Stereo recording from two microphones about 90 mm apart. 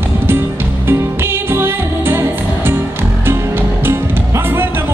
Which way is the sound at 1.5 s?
25° right (ahead or behind).